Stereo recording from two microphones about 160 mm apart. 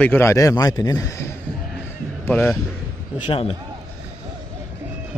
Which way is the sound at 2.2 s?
10° left (ahead or behind).